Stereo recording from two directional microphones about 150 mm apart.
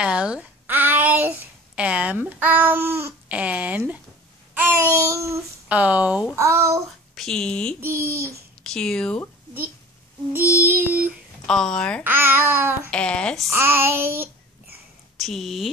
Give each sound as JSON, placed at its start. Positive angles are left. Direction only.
{"t": 0.0, "sound": "a sound", "side_deg": -5}
{"t": 1.8, "sound": "speech", "side_deg": -10}
{"t": 7.2, "sound": "a woman's voice", "side_deg": 5}
{"t": 7.8, "sound": "speech", "side_deg": -20}
{"t": 8.6, "sound": "speech", "side_deg": 5}
{"t": 10.6, "sound": "speech", "side_deg": -15}
{"t": 11.4, "sound": "speech", "side_deg": 5}
{"t": 12.0, "sound": "speech", "side_deg": -15}
{"t": 12.9, "sound": "speech", "side_deg": 5}
{"t": 13.5, "sound": "speech", "side_deg": -15}
{"t": 15.1, "sound": "speech", "side_deg": 0}